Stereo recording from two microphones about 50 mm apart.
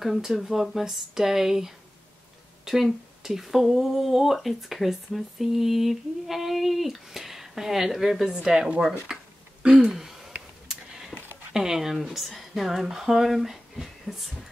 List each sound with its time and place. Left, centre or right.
0.0 s speech: centre
8.3 s speech: centre
9.1 s a sound: centre
9.6 s throat clearing: right
9.9 s a sound: centre
10.7 s tick-tock: centre
11.5 s speech: centre